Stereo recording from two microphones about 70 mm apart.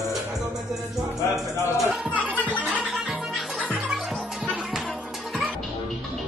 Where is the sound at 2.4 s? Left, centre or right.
Centre.